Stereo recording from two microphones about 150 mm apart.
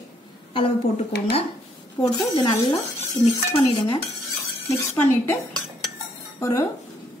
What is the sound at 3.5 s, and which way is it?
Speech, 35° left (ahead or behind).